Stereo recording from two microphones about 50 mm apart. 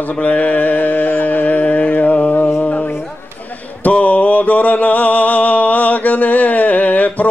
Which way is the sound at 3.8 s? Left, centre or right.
Left.